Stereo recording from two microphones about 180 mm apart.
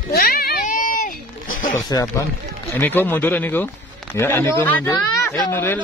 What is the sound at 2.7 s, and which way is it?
Speech, 10° left (ahead or behind).